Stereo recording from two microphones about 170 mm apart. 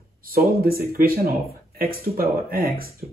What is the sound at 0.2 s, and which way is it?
Speech, 60° right (ahead or behind).